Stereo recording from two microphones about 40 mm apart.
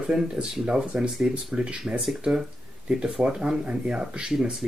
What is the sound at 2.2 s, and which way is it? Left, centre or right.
Speech, centre.